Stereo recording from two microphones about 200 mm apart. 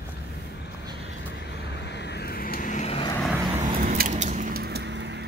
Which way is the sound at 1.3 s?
55° left (ahead or behind).